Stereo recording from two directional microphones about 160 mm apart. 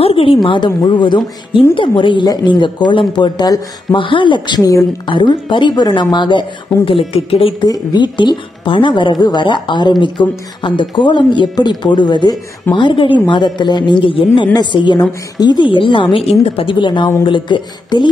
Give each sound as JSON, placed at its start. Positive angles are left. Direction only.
{"t": 0.0, "sound": "a woman's voice", "side_deg": 35}